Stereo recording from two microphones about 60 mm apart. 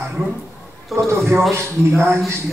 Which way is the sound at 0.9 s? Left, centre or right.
Right.